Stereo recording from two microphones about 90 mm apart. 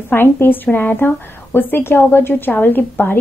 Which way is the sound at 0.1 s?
25° left (ahead or behind).